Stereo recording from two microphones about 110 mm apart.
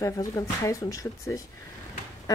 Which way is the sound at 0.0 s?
30° left (ahead or behind).